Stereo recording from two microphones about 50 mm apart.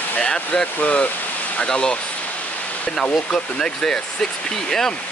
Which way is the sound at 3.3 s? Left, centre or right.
Centre.